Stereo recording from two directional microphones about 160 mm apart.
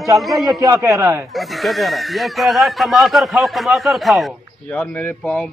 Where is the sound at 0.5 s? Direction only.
20° right (ahead or behind).